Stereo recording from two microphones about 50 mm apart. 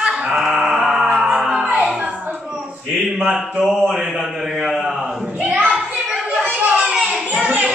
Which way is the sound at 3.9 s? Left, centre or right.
Centre.